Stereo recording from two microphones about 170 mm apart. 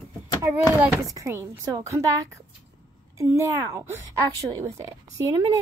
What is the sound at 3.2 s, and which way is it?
Speech, 20° right (ahead or behind).